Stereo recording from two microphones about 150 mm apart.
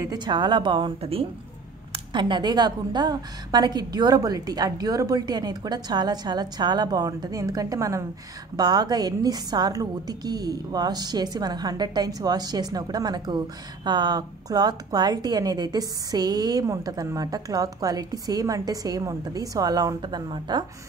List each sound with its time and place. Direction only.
0.1 s a woman's voice: 30° right (ahead or behind)